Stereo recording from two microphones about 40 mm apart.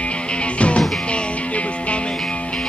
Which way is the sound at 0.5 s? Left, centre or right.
Left.